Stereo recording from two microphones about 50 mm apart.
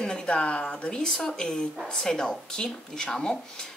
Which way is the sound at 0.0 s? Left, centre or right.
Centre.